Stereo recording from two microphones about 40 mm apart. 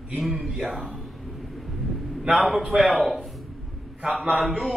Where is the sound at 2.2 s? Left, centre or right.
Right.